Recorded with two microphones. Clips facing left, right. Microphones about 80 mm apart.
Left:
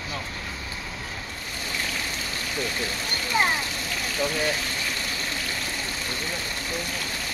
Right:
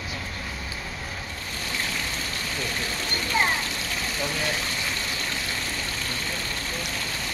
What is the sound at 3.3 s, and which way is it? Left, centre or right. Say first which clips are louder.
Speech: left 1 dB; centre.